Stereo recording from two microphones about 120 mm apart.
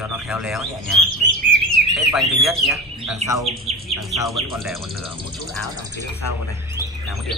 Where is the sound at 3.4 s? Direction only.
60° right (ahead or behind).